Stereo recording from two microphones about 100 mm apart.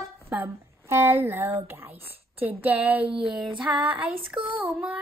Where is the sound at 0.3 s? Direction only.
15° right (ahead or behind).